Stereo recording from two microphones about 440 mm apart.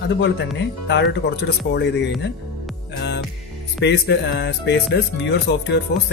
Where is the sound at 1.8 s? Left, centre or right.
Left.